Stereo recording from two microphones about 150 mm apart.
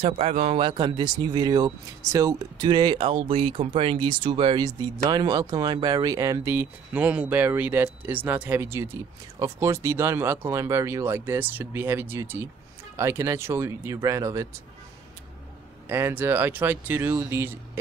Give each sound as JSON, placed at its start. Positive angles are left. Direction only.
{"t": 0.0, "sound": "speech", "side_deg": -45}
{"t": 15.9, "sound": "speech", "side_deg": -15}